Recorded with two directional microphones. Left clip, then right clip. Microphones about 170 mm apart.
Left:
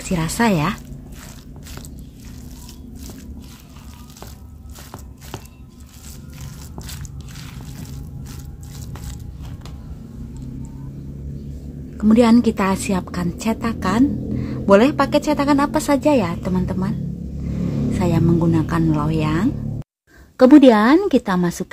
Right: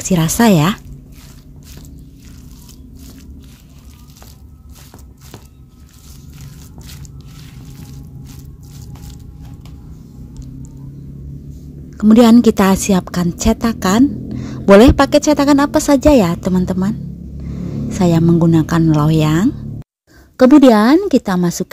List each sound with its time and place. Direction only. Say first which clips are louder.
0.0 s a woman's voice: right 6 dB; 45° right (ahead or behind)
12.0 s a woman's voice: right 5 dB; 45° right (ahead or behind)
17.9 s a woman's voice: right 6 dB; 45° right (ahead or behind)
20.3 s speech: right 2 dB; 25° right (ahead or behind)